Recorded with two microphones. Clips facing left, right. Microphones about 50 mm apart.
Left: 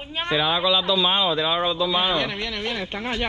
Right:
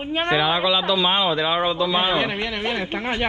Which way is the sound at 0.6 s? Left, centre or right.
Right.